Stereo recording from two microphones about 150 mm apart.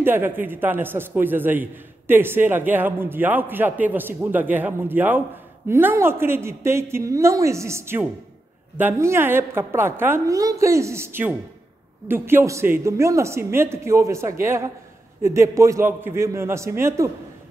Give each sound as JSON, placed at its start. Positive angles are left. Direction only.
{"t": 0.0, "sound": "a man's voice", "side_deg": -15}